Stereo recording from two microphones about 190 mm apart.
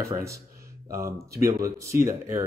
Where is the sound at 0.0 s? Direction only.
15° right (ahead or behind).